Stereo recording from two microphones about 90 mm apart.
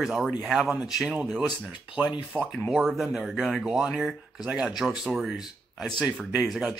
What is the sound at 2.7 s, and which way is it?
Speech, 5° right (ahead or behind).